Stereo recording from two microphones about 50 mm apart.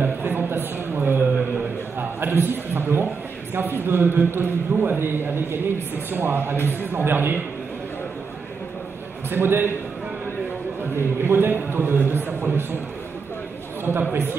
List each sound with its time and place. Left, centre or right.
0.0 s a sound: right
3.5 s speech: right
9.3 s speech: right
11.2 s a man's voice: right
13.8 s speech: right